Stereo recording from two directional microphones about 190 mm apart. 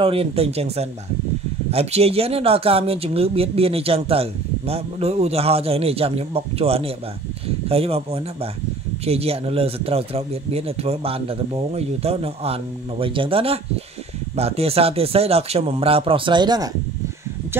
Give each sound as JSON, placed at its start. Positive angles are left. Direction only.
{"t": 0.0, "sound": "speech", "side_deg": -30}